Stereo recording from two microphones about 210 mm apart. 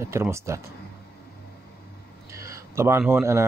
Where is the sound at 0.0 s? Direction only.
15° right (ahead or behind).